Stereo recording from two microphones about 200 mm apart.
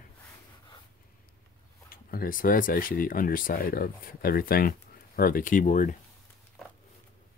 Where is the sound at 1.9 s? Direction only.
45° left (ahead or behind).